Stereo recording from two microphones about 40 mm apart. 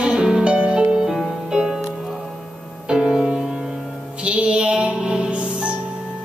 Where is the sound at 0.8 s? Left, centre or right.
Right.